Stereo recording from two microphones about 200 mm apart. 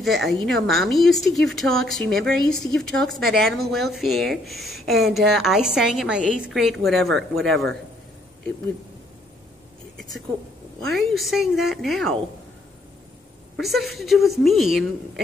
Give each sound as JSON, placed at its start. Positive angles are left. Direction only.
{"t": 0.0, "sound": "a woman's voice", "side_deg": 0}
{"t": 9.9, "sound": "a woman's voice", "side_deg": 0}
{"t": 13.6, "sound": "a woman's voice", "side_deg": 0}